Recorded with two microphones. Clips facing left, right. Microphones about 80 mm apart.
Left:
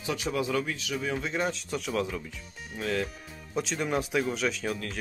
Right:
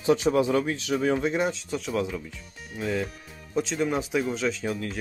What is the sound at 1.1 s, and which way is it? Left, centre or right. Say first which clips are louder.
Speech: right 3 dB; right.